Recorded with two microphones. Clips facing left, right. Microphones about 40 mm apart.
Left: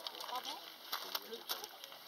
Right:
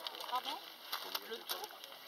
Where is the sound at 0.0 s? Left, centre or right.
Centre.